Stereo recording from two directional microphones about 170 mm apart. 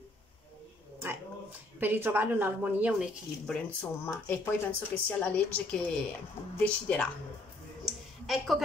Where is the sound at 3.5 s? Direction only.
10° left (ahead or behind).